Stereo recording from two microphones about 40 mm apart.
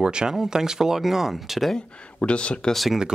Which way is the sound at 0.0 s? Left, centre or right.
Centre.